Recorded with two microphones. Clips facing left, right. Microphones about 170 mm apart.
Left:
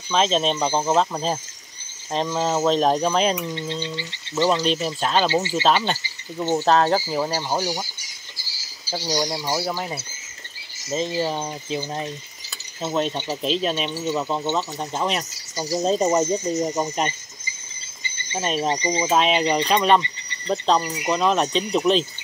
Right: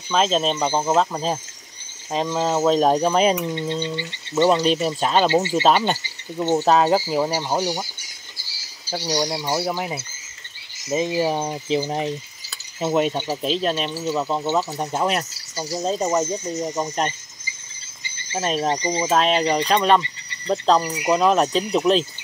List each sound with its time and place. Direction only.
0.1 s speech: centre (ahead or behind)
3.3 s speech: 20° right (ahead or behind)
9.0 s speech: 5° right (ahead or behind)
10.9 s speech: 15° right (ahead or behind)
15.8 s speech: 20° left (ahead or behind)
18.1 s speech: centre (ahead or behind)